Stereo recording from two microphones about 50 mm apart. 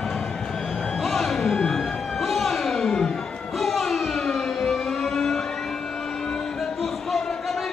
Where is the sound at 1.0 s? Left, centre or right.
Centre.